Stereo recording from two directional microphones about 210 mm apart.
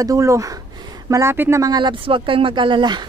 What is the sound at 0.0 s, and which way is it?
Speech, 15° right (ahead or behind).